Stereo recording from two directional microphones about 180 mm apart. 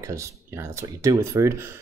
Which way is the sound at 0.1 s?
15° right (ahead or behind).